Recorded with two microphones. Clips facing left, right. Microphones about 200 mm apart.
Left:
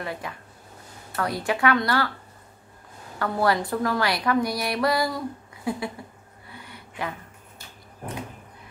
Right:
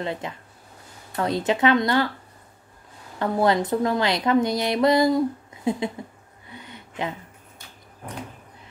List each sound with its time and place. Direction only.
0.0 s speech: 20° right (ahead or behind)
3.2 s speech: 20° right (ahead or behind)
6.5 s a sound: 20° right (ahead or behind)